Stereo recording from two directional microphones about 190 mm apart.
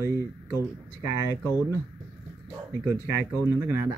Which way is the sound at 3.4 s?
10° right (ahead or behind).